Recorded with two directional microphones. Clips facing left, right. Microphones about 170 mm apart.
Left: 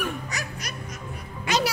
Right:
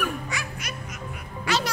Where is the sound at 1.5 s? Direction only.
20° left (ahead or behind).